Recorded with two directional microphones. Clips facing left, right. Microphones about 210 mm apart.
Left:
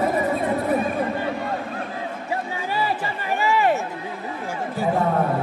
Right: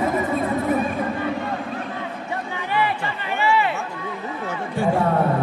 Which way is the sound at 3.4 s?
45° left (ahead or behind).